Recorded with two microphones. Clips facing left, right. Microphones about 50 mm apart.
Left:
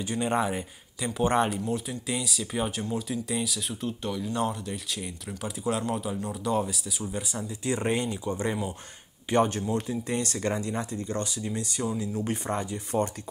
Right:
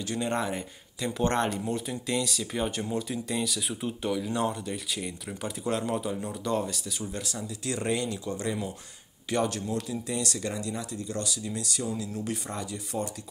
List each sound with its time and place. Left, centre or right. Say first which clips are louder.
0.0 s speech: left 3 dB; centre
7.3 s speech: left 4 dB; left